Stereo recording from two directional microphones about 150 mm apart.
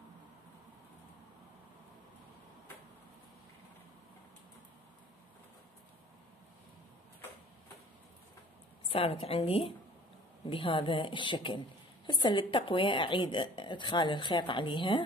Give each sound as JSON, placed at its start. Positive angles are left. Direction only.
{"t": 8.8, "sound": "a woman's voice", "side_deg": 40}